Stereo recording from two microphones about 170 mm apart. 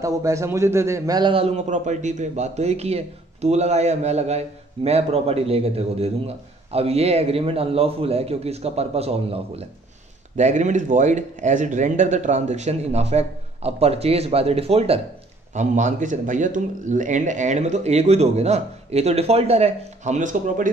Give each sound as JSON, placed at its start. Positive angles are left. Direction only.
{"t": 0.0, "sound": "a man's voice", "side_deg": -20}